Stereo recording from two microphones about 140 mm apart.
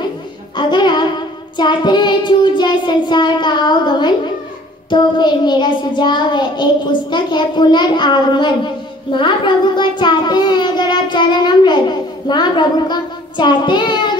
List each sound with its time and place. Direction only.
0.6 s music: 35° left (ahead or behind)
1.6 s child singing: 35° left (ahead or behind)
9.1 s a child's voice: 35° left (ahead or behind)
12.3 s child singing: 30° left (ahead or behind)